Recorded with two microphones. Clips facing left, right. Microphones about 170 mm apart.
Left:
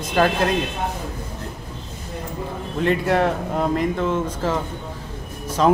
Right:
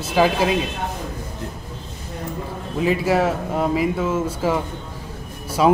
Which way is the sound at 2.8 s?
5° right (ahead or behind).